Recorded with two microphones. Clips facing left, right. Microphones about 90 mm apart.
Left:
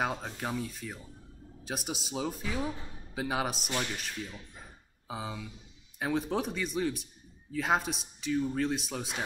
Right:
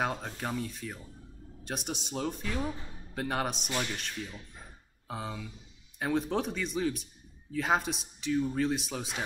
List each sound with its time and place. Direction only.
0.0 s a man's voice: centre (ahead or behind)